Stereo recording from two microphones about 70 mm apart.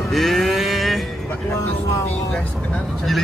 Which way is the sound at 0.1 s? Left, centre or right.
Centre.